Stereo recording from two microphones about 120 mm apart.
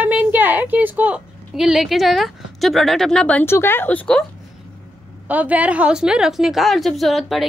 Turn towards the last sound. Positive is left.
turn(degrees=0)  # may be behind; listen again after turning